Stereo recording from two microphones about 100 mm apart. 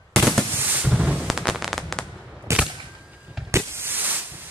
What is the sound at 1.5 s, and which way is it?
Fireworks, centre (ahead or behind).